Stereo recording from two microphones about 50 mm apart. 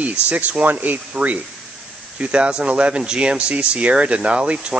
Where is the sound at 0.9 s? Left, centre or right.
Right.